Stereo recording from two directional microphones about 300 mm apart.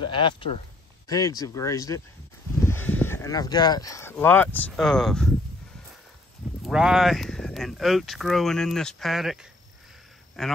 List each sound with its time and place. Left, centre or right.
0.0 s speech: centre
6.6 s speech: centre